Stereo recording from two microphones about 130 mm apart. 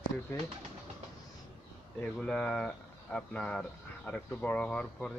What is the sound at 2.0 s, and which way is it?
Speech, 10° left (ahead or behind).